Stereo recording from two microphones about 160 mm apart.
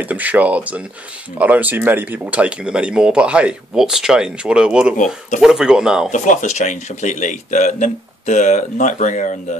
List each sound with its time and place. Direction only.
0.0 s speech: 10° right (ahead or behind)
6.1 s speech: 50° left (ahead or behind)